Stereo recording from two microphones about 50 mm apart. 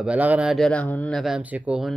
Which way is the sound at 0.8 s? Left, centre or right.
Left.